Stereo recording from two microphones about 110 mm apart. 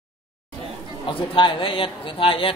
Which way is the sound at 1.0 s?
50° left (ahead or behind).